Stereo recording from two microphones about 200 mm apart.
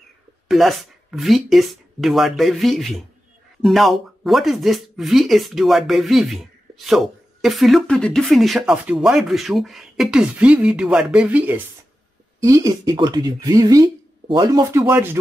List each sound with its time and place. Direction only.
0.5 s speech: centre (ahead or behind)